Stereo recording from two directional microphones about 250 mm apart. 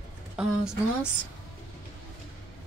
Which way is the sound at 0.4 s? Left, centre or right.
Centre.